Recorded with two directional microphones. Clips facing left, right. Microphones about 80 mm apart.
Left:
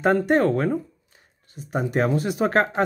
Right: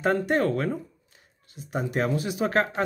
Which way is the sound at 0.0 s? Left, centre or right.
Left.